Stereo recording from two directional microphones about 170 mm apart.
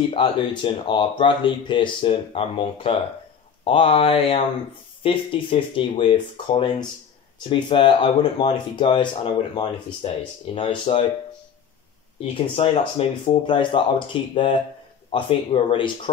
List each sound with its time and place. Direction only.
0.1 s speech: 30° left (ahead or behind)
12.2 s speech: 35° left (ahead or behind)